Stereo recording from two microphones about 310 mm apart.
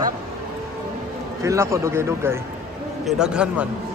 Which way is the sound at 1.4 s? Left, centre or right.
Centre.